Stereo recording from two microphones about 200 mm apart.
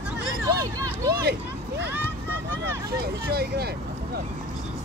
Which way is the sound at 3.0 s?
50° right (ahead or behind).